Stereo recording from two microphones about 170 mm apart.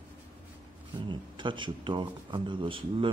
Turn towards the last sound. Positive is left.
turn(degrees=-30)  # may be behind; listen again after turning